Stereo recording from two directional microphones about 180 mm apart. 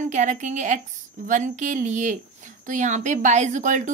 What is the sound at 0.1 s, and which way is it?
A woman's voice, 40° right (ahead or behind).